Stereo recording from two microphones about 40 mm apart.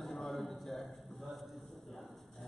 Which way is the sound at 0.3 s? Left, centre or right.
Centre.